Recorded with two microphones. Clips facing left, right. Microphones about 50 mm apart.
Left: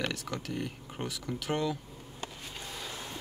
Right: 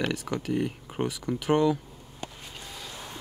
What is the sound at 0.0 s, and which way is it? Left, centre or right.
Speech, centre.